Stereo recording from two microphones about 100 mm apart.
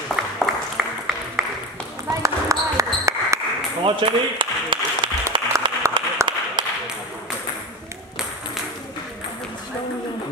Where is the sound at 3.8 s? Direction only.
55° right (ahead or behind).